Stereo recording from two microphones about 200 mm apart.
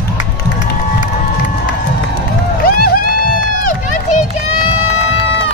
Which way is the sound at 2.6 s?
45° left (ahead or behind).